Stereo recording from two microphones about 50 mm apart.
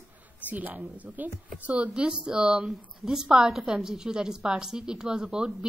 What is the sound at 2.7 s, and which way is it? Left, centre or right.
A woman's voice, centre.